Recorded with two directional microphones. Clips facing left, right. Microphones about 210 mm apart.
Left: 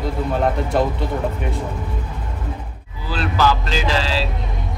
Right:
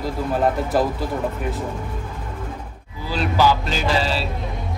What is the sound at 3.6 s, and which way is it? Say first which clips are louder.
Music: even; 90° left.